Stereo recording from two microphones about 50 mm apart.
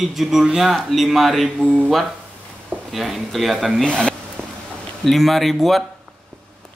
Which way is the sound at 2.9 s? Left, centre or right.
Centre.